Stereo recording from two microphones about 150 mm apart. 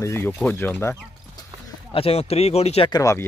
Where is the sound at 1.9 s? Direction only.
40° left (ahead or behind).